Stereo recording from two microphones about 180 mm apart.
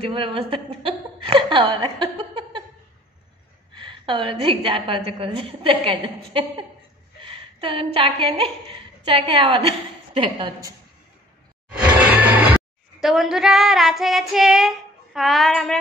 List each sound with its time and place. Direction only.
0.0 s a woman's voice: 30° right (ahead or behind)
3.7 s a woman's voice: 25° right (ahead or behind)
12.0 s a sound: 10° right (ahead or behind)
13.0 s child singing: centre (ahead or behind)